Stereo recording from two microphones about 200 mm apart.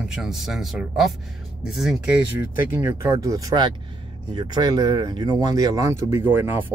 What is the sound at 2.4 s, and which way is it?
Speech, 10° right (ahead or behind).